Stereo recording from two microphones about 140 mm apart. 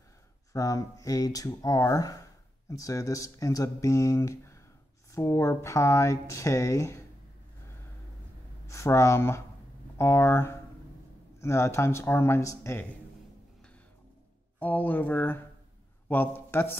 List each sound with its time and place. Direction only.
0.5 s speech: 25° left (ahead or behind)
8.6 s speech: 20° left (ahead or behind)
14.6 s a man's voice: 10° left (ahead or behind)